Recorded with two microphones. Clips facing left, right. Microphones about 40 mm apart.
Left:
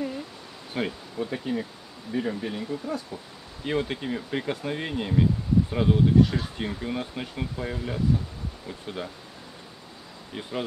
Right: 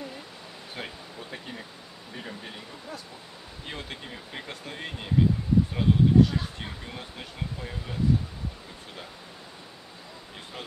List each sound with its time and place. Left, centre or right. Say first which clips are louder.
0.7 s speech: left 10 dB; centre